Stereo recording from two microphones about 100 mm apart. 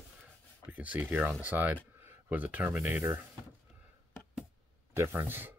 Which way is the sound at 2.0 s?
20° right (ahead or behind).